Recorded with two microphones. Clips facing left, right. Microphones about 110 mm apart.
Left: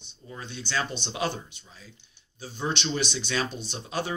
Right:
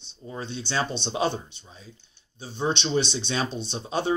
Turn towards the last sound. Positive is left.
turn(degrees=-25)  # may be behind; listen again after turning